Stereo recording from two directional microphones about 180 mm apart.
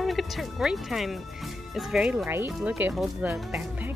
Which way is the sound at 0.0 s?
Centre (ahead or behind).